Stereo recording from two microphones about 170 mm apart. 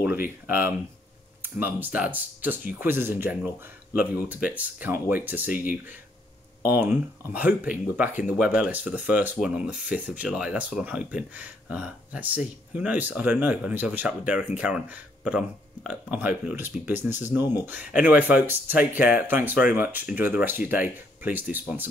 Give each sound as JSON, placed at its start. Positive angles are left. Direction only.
{"t": 0.5, "sound": "speech", "side_deg": -10}